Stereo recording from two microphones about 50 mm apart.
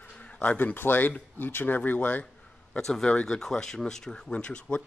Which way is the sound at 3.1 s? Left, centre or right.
Left.